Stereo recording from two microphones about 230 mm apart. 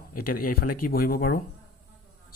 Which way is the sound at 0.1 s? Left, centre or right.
Left.